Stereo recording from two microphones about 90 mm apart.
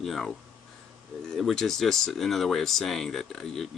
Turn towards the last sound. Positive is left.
turn(degrees=5)  # may be behind; listen again after turning